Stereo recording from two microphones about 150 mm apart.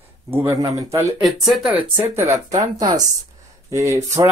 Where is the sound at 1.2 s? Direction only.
Centre (ahead or behind).